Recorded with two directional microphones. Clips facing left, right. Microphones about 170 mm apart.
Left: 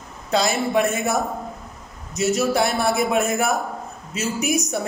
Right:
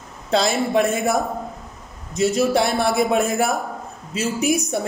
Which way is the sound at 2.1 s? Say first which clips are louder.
Right 2 dB; 30° right (ahead or behind).